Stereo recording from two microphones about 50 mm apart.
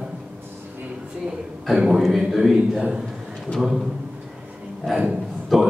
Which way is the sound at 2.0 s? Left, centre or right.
Centre.